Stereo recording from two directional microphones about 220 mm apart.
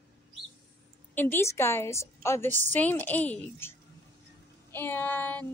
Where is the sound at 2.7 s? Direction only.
10° left (ahead or behind).